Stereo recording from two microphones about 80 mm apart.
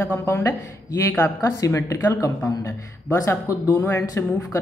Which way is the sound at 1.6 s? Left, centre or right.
Left.